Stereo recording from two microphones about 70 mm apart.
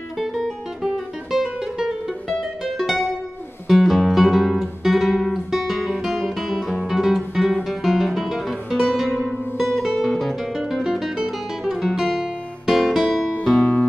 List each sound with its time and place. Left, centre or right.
0.2 s music: centre
13.4 s music: centre